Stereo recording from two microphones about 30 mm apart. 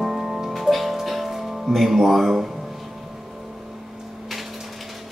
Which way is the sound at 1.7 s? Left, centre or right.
Centre.